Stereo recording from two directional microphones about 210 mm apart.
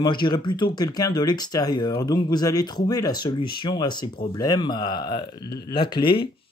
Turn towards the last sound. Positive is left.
turn(degrees=25)  # may be behind; listen again after turning